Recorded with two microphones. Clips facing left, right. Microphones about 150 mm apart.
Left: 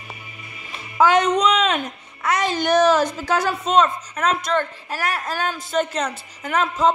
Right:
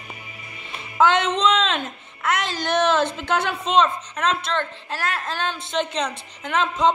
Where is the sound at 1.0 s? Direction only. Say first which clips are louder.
Left 2 dB; 10° left (ahead or behind).